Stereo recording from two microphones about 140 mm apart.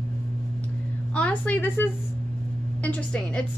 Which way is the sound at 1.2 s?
10° left (ahead or behind).